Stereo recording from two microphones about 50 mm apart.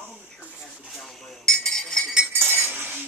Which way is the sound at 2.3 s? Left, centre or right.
Right.